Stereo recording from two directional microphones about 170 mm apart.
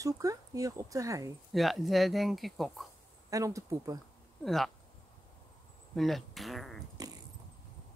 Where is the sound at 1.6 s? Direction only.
Centre (ahead or behind).